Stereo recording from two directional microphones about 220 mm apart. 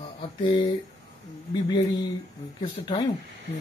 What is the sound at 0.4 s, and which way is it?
Speech, 20° left (ahead or behind).